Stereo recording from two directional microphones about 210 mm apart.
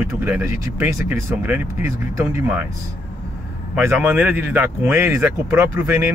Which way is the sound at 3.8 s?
10° right (ahead or behind).